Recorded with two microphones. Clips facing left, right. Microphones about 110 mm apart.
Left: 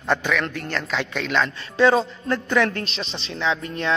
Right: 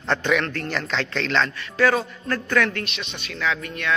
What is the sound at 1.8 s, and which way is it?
A man's voice, 25° left (ahead or behind).